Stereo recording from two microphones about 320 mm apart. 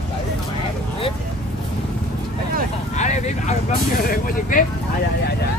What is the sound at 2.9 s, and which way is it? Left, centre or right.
Vehicle, left.